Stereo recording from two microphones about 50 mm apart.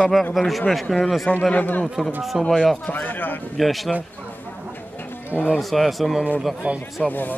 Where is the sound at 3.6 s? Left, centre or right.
Centre.